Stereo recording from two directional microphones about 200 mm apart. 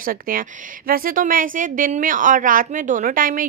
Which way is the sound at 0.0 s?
45° right (ahead or behind).